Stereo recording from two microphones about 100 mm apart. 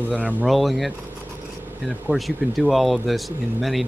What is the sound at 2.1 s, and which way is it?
Speech, centre (ahead or behind).